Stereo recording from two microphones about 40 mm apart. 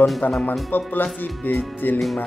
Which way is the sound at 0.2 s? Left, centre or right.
Left.